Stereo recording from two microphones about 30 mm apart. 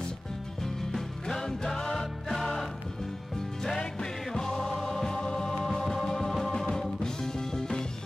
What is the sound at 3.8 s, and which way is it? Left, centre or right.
Music, left.